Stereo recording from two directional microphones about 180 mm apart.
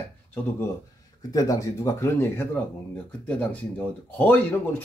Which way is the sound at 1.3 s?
20° left (ahead or behind).